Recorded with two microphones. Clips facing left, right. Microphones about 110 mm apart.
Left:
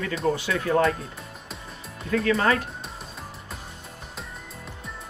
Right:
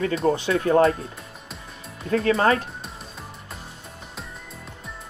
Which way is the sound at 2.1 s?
35° right (ahead or behind).